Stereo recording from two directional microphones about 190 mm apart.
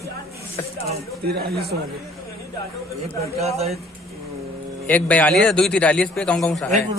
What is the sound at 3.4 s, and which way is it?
Speech, 35° right (ahead or behind).